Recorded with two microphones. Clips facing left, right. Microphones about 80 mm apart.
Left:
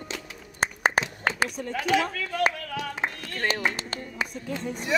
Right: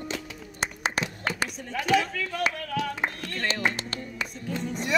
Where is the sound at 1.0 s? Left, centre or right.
Left.